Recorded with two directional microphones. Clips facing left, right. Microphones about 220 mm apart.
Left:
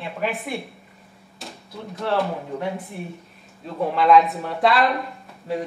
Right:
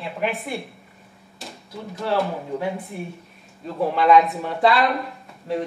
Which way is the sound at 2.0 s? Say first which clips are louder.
Even; centre (ahead or behind).